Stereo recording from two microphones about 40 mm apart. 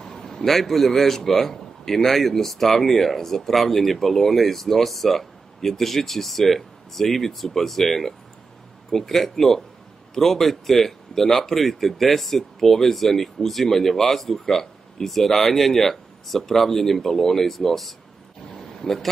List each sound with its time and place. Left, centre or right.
0.0 s a man's voice: centre